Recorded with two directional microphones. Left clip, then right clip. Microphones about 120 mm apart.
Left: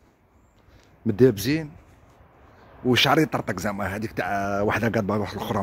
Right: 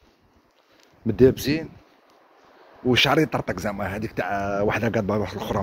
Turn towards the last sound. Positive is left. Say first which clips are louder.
# right 1 dB
turn(degrees=50)  # may be behind; listen again after turning